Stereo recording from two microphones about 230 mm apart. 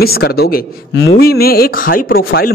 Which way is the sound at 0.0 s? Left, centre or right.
Left.